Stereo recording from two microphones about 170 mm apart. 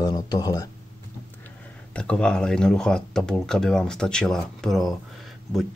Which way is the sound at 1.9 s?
5° left (ahead or behind).